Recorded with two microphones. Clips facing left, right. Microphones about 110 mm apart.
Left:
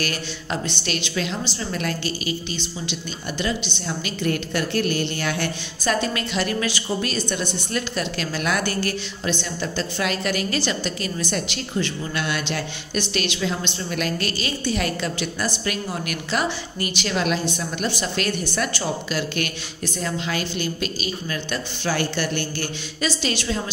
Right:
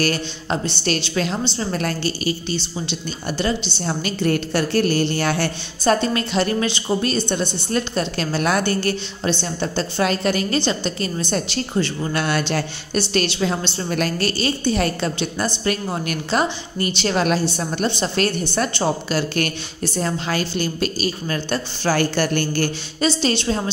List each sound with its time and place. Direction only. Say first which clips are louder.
0.0 s a woman's voice: right 6 dB; 35° right (ahead or behind)
17.8 s a woman's voice: right 4 dB; 25° right (ahead or behind); by 22.7 s 45° right (ahead or behind)
23.0 s a woman's voice: right 5 dB; 30° right (ahead or behind)